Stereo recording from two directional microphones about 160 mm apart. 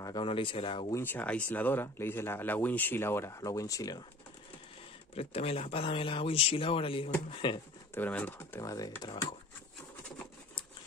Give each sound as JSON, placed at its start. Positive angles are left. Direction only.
{"t": 0.0, "sound": "speech", "side_deg": 30}
{"t": 0.9, "sound": "speech", "side_deg": 15}
{"t": 5.1, "sound": "speech", "side_deg": 40}
{"t": 7.9, "sound": "speech", "side_deg": 10}